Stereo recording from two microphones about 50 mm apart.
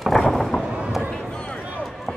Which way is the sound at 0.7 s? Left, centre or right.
Centre.